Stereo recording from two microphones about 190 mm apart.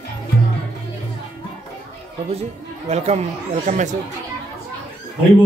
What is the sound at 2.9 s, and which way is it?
Speech, 35° right (ahead or behind).